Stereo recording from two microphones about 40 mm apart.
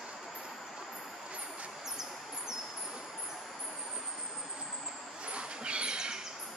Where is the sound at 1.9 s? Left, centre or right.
Centre.